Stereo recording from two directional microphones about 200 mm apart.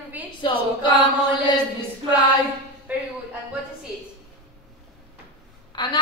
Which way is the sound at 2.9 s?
5° right (ahead or behind).